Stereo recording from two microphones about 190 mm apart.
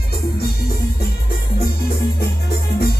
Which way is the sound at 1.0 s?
55° left (ahead or behind).